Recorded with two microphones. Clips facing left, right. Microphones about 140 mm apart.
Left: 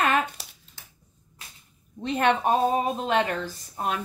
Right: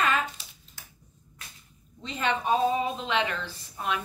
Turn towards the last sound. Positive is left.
turn(degrees=45)  # may be behind; listen again after turning